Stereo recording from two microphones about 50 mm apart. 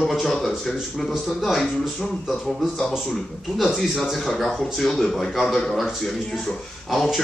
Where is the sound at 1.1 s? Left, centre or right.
Centre.